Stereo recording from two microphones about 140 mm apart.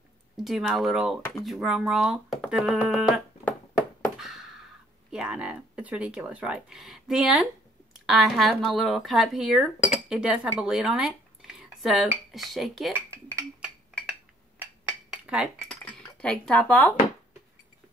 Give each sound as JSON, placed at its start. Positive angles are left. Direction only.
{"t": 0.4, "sound": "speech", "side_deg": 0}
{"t": 3.7, "sound": "a sound", "side_deg": -5}
{"t": 5.1, "sound": "speech", "side_deg": -5}
{"t": 12.9, "sound": "speech", "side_deg": -20}
{"t": 14.9, "sound": "cutlery", "side_deg": -5}
{"t": 15.7, "sound": "speech", "side_deg": 10}